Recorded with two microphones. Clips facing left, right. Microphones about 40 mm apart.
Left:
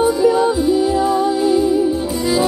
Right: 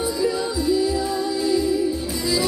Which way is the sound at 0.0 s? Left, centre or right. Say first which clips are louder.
Left 9 dB; left.